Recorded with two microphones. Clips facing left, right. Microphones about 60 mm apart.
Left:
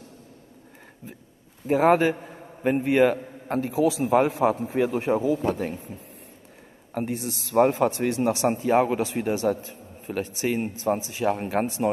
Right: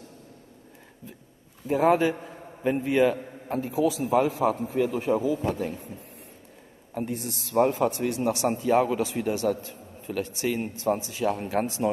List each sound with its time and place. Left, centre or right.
1.7 s a man's voice: left
2.0 s a man's voice: left
3.7 s a man's voice: left
4.5 s speech: left
6.9 s a woman's voice: left
7.2 s a man's voice: right
7.4 s a man's voice: left